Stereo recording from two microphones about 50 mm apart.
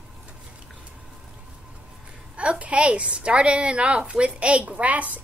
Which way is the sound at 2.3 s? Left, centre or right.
Right.